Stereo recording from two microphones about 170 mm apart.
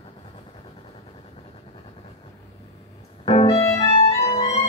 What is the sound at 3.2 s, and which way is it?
Music, 35° left (ahead or behind).